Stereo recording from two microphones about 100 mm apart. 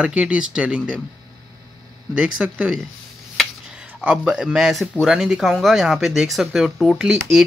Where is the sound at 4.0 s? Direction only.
5° right (ahead or behind).